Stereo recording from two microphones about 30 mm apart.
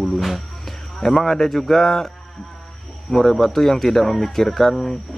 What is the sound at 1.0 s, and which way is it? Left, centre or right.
Speech, centre.